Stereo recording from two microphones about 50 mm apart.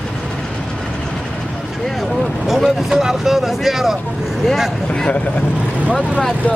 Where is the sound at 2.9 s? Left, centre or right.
Centre.